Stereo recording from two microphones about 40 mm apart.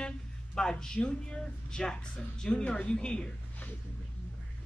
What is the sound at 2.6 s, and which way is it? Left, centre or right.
Speech, left.